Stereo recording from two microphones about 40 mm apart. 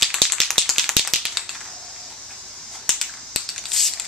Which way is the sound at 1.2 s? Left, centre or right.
Centre.